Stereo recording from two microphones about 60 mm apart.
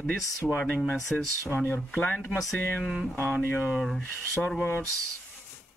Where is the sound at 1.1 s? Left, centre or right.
Left.